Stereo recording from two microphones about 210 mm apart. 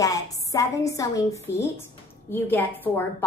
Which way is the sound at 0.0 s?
15° left (ahead or behind).